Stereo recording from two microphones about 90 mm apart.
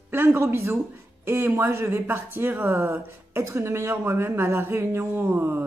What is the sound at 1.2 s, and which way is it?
Speech, 25° right (ahead or behind).